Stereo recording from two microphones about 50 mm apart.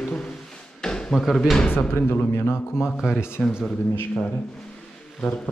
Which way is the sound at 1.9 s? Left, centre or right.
Left.